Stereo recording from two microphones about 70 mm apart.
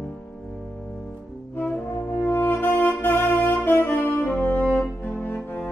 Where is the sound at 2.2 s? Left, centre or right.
Left.